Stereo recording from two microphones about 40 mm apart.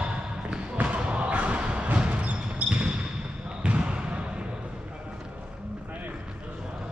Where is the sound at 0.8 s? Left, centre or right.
Right.